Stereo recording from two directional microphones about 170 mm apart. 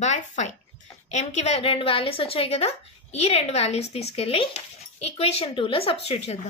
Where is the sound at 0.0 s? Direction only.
45° left (ahead or behind).